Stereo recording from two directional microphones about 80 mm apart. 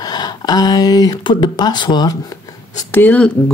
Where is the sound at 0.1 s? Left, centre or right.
Left.